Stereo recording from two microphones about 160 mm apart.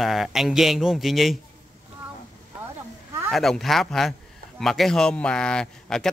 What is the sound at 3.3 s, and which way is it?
Speech, centre (ahead or behind).